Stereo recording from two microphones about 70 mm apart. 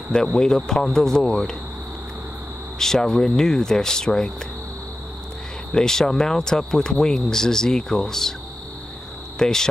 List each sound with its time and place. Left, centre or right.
0.1 s speech: centre
2.8 s speech: centre
5.7 s speech: centre
9.4 s speech: centre